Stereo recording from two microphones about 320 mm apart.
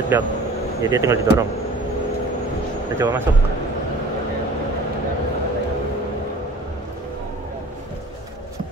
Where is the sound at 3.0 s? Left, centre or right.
Centre.